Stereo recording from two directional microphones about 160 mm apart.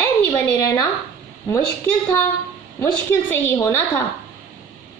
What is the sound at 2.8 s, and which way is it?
A woman's voice, 15° left (ahead or behind).